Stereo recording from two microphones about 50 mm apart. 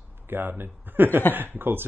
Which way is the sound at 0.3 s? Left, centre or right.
Right.